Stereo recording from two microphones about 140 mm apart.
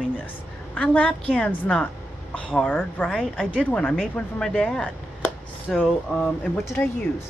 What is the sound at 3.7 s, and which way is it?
Chopping, 5° left (ahead or behind).